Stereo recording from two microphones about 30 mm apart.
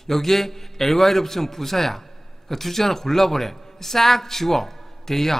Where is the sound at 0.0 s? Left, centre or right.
Centre.